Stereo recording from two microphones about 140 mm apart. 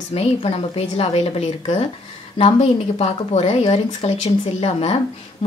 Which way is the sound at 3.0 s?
45° left (ahead or behind).